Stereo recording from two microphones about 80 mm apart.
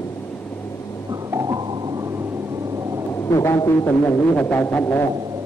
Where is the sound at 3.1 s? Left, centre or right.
Left.